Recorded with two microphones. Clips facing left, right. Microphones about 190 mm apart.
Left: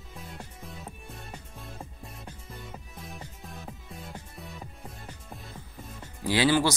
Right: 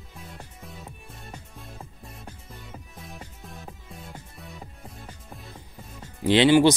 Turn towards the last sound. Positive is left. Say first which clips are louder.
# right 7 dB
turn(degrees=-20)  # may be behind; listen again after turning